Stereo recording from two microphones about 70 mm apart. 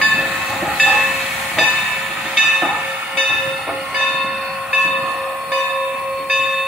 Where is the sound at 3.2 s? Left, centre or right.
Centre.